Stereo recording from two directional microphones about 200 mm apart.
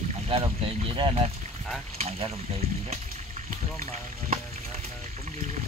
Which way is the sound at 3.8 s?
35° right (ahead or behind).